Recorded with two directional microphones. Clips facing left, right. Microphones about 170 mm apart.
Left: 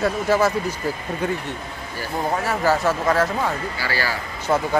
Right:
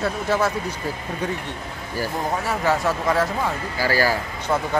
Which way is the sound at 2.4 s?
Centre (ahead or behind).